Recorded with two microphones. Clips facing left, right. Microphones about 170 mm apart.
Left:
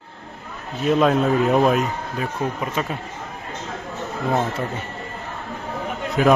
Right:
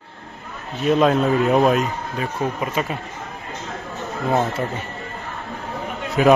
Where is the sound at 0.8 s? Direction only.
Centre (ahead or behind).